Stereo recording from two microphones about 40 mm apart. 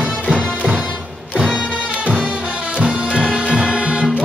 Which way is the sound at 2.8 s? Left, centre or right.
Right.